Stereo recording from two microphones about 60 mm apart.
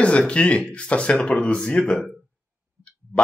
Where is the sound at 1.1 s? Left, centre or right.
Centre.